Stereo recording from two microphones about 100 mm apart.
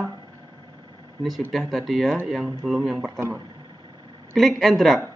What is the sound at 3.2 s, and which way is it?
Speech, 25° right (ahead or behind).